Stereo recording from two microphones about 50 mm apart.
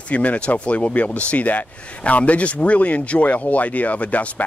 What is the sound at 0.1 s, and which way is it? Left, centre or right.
Speech, left.